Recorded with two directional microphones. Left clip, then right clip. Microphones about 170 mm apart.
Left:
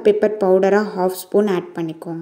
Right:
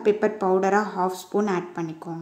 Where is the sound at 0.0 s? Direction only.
20° left (ahead or behind).